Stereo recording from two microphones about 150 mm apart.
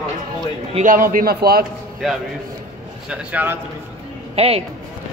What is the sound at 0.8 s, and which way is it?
Speech, 65° right (ahead or behind).